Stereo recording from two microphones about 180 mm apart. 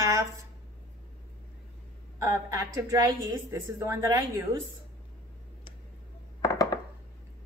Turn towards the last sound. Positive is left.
turn(degrees=20)  # may be behind; listen again after turning